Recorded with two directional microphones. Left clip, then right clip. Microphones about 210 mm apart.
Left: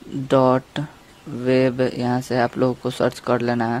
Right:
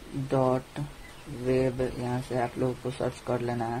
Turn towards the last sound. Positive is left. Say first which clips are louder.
# left 10 dB
turn(degrees=45)  # may be behind; listen again after turning